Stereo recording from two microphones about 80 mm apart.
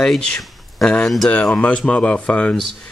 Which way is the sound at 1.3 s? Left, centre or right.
Centre.